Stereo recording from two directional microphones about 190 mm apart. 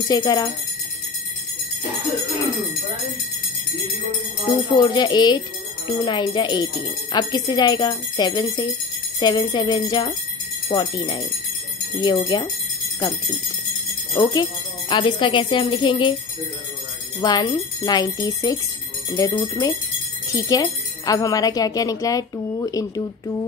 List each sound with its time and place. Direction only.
0.1 s speech: 20° left (ahead or behind)
4.7 s speech: 20° left (ahead or behind)
14.1 s speech: 25° left (ahead or behind)
17.2 s speech: 20° left (ahead or behind)